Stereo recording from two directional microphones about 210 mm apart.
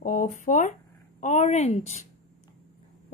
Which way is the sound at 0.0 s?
40° left (ahead or behind).